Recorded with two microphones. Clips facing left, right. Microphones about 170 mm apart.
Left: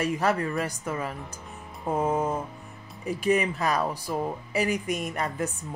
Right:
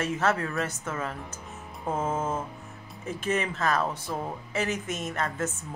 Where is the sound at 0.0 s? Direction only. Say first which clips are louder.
Left 1 dB; 10° left (ahead or behind).